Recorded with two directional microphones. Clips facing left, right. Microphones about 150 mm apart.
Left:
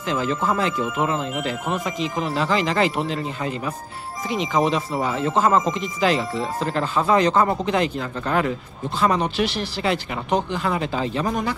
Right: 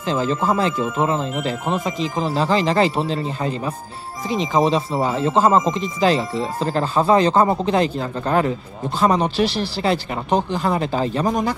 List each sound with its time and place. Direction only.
0.0 s speech: 30° right (ahead or behind)